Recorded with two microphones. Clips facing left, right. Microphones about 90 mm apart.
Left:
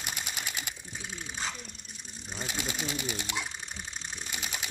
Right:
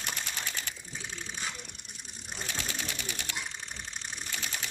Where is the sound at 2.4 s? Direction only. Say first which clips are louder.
Left 2 dB; 15° left (ahead or behind).